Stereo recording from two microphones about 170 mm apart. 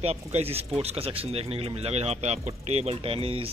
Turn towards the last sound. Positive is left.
turn(degrees=-35)  # may be behind; listen again after turning